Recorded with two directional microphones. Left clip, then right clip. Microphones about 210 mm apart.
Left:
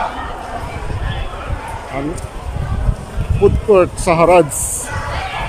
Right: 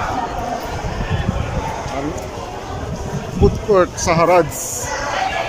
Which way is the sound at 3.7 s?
10° left (ahead or behind).